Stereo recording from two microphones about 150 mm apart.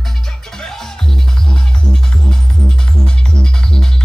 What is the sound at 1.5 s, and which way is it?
Music, 5° left (ahead or behind).